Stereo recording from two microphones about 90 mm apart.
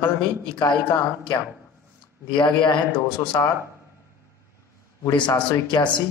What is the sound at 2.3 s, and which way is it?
Speech, 60° left (ahead or behind).